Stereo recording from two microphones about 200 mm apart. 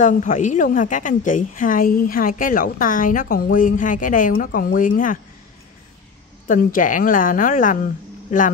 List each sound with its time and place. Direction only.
0.0 s a woman's voice: 40° left (ahead or behind)
6.4 s a woman's voice: 40° left (ahead or behind)